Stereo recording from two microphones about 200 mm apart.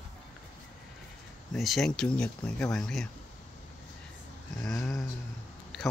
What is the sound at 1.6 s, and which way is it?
Speech, centre (ahead or behind).